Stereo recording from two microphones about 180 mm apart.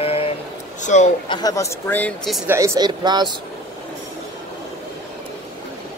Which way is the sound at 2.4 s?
15° right (ahead or behind).